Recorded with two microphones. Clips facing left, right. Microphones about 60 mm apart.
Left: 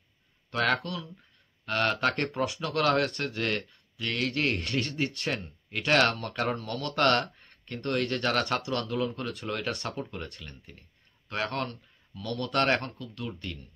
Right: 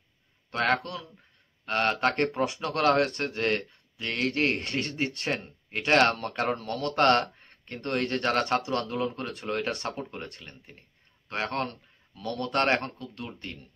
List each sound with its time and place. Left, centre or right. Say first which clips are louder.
0.5 s speech: right 1 dB; right